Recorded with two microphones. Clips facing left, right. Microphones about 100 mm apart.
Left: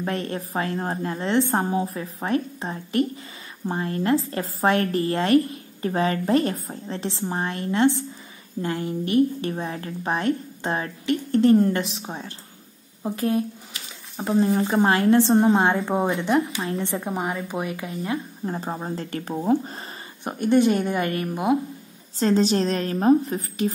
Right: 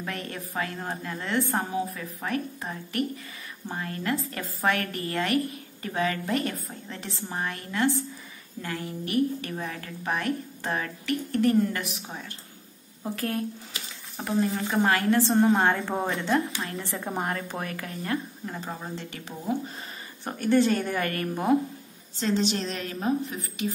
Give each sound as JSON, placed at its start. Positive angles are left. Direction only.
{"t": 0.0, "sound": "a woman's voice", "side_deg": 30}
{"t": 16.3, "sound": "a woman's voice", "side_deg": 30}
{"t": 17.0, "sound": "speech", "side_deg": 5}
{"t": 18.4, "sound": "a woman's voice", "side_deg": 30}
{"t": 20.2, "sound": "speech", "side_deg": 20}
{"t": 22.2, "sound": "a woman's voice", "side_deg": 40}